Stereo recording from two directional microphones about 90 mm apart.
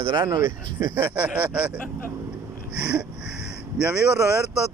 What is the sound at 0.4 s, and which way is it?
Speech, 25° right (ahead or behind).